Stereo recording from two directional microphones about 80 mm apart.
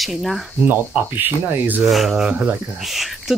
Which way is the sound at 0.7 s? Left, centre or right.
Right.